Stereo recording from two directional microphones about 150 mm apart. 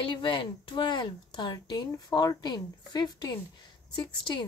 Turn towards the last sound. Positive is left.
turn(degrees=35)  # may be behind; listen again after turning